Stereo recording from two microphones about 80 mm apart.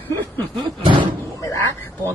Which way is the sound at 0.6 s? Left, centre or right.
Right.